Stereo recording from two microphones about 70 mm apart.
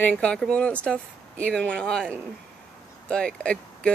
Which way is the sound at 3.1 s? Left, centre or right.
Centre.